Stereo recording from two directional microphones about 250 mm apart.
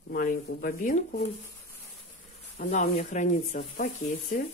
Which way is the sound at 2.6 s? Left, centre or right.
Left.